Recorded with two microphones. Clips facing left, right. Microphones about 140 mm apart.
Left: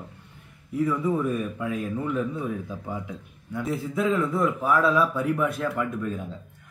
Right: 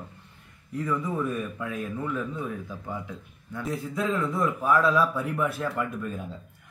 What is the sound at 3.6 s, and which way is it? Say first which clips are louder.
A man's voice: left 3 dB; centre (ahead or behind).